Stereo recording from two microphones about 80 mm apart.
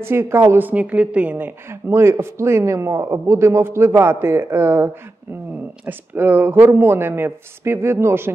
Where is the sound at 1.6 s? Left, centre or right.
Right.